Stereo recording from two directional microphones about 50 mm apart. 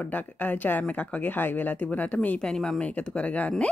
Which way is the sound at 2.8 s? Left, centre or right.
Left.